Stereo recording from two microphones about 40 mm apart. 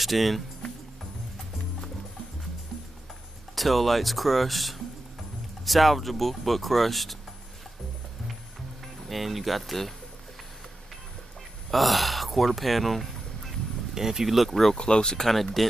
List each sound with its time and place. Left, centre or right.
0.0 s speech: centre
3.5 s speech: centre
8.8 s speech: centre
11.7 s speech: centre
13.9 s speech: centre
14.8 s speech: left
15.2 s speech: centre